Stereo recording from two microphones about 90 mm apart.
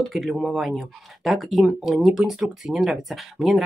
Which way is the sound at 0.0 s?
5° left (ahead or behind).